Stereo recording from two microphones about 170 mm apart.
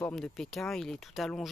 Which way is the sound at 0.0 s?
5° left (ahead or behind).